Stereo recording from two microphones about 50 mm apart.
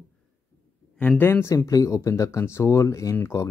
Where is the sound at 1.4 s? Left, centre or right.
Left.